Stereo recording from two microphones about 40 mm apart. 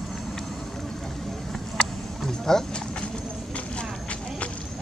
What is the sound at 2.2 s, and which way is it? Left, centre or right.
Speech, centre.